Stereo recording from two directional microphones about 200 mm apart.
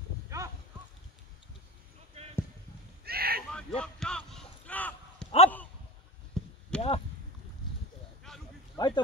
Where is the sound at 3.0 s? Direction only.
50° right (ahead or behind).